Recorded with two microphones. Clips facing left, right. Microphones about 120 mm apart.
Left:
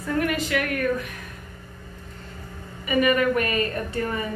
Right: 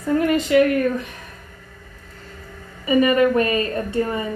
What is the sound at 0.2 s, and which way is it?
Speech, 25° right (ahead or behind).